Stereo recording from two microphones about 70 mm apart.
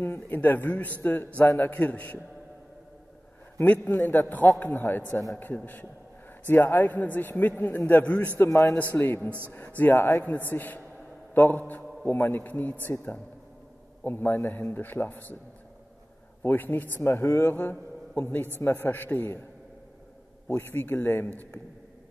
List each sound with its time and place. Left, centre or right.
0.0 s a man's voice: left
3.5 s a man's voice: left
3.9 s a man's voice: left
16.4 s a man's voice: left
20.4 s a man's voice: left